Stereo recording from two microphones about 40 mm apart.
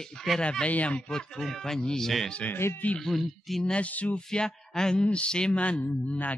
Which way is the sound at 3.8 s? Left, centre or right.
Left.